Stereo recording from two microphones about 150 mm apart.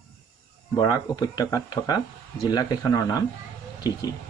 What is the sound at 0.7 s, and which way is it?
Speech, 25° left (ahead or behind).